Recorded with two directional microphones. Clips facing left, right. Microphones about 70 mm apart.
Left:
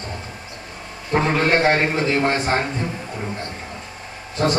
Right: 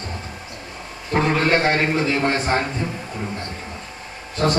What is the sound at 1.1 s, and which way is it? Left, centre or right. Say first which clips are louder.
Speech: even; centre.